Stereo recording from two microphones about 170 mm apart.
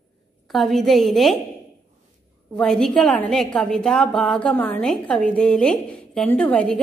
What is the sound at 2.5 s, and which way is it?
A woman's voice, 5° left (ahead or behind).